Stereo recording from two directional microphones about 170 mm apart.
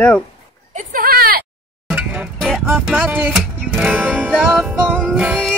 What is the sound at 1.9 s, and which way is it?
Music, 5° right (ahead or behind).